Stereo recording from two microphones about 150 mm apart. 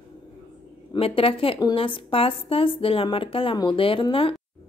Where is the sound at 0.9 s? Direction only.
40° left (ahead or behind).